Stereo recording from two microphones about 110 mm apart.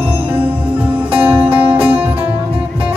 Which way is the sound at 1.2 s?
15° right (ahead or behind).